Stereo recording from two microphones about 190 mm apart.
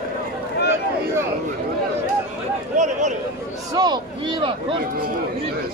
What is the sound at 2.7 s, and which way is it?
Speech, 40° right (ahead or behind).